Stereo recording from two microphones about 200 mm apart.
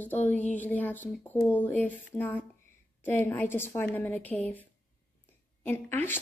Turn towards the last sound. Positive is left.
turn(degrees=10)  # may be behind; listen again after turning